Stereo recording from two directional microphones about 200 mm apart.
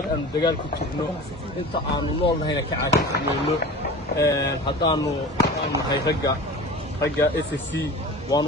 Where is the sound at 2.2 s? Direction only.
25° left (ahead or behind).